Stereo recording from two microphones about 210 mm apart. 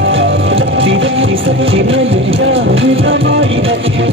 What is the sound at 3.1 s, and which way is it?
Music, 65° right (ahead or behind).